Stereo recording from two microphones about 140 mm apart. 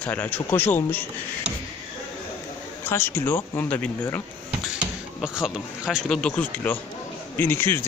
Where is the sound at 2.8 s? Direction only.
15° left (ahead or behind).